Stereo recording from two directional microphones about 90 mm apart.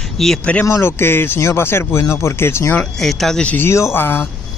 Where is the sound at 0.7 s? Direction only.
30° left (ahead or behind).